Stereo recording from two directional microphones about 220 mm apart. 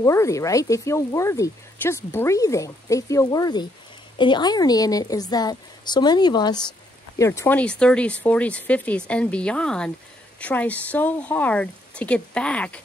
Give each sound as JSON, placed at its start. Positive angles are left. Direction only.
{"t": 0.0, "sound": "speech", "side_deg": 15}